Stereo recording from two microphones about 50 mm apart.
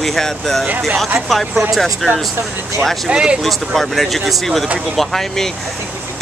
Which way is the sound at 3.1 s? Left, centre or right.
Centre.